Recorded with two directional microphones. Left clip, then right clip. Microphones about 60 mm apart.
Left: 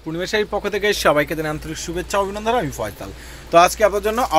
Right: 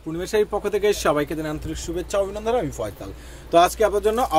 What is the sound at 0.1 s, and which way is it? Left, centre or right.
Speech, centre.